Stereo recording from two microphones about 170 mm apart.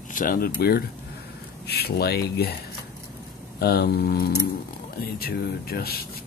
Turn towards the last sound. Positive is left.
turn(degrees=65)  # may be behind; listen again after turning